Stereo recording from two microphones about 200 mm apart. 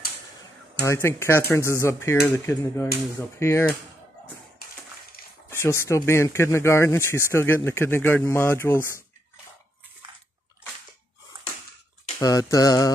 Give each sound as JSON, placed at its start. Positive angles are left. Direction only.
{"t": 0.8, "sound": "speech", "side_deg": 15}
{"t": 5.5, "sound": "speech", "side_deg": 10}
{"t": 12.2, "sound": "speech", "side_deg": 15}